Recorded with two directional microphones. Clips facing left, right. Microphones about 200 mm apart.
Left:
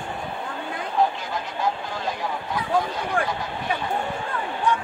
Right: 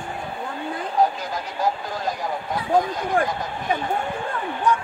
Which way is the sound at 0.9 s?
40° right (ahead or behind).